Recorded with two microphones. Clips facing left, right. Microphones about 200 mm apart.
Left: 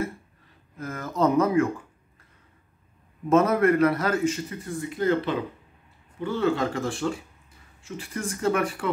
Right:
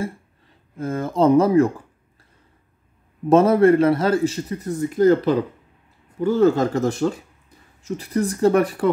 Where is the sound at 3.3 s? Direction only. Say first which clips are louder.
Right 6 dB; 30° right (ahead or behind).